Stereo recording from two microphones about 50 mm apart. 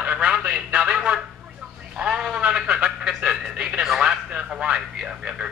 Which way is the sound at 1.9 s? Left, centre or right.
Centre.